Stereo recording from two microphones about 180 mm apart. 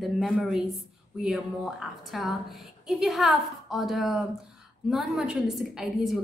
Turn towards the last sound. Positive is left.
turn(degrees=0)  # may be behind; listen again after turning